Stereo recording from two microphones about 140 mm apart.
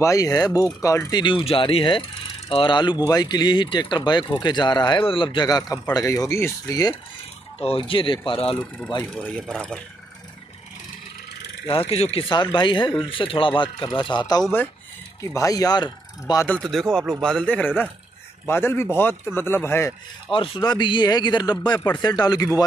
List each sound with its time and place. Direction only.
0.0 s speech: 25° left (ahead or behind)
1.2 s speech: 35° left (ahead or behind)
7.6 s speech: 40° left (ahead or behind)
8.5 s speech: 5° left (ahead or behind)
11.6 s speech: 45° left (ahead or behind)
12.3 s speech: 35° left (ahead or behind)
16.4 s a man's voice: 5° left (ahead or behind)
20.2 s speech: 40° left (ahead or behind)